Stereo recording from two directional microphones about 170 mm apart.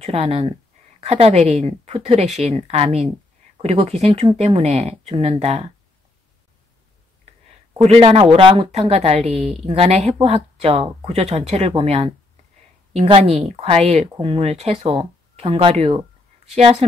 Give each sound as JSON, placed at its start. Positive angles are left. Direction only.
{"t": 0.0, "sound": "speech", "side_deg": -35}
{"t": 7.8, "sound": "speech", "side_deg": -35}
{"t": 14.1, "sound": "speech", "side_deg": -25}
{"t": 14.4, "sound": "speech", "side_deg": -35}